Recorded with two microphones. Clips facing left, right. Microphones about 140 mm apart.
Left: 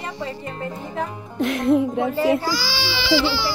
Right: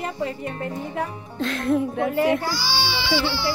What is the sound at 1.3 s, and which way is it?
Speech, 20° left (ahead or behind).